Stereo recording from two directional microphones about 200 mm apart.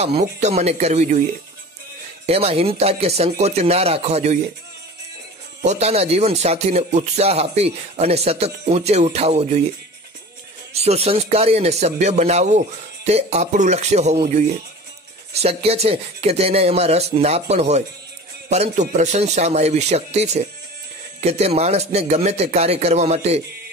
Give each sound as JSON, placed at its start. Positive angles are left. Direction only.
{"t": 0.0, "sound": "a man's voice", "side_deg": -35}
{"t": 2.2, "sound": "a man's voice", "side_deg": -30}
{"t": 5.6, "sound": "a man's voice", "side_deg": -35}
{"t": 10.7, "sound": "a man's voice", "side_deg": -30}
{"t": 15.3, "sound": "a man's voice", "side_deg": -30}